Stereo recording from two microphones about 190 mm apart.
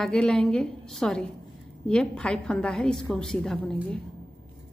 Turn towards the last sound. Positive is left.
turn(degrees=5)  # may be behind; listen again after turning